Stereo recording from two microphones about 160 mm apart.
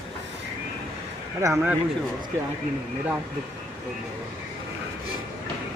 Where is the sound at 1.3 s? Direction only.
15° right (ahead or behind).